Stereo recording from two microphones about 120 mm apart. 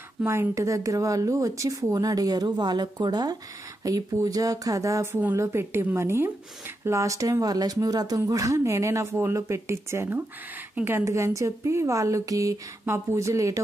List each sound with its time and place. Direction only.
0.2 s speech: 20° right (ahead or behind)